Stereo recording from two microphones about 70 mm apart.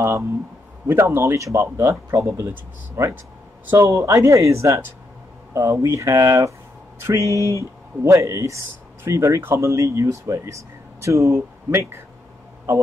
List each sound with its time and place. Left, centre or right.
0.0 s speech: right